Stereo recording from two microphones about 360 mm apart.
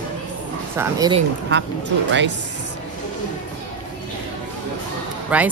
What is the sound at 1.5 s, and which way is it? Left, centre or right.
Speech, right.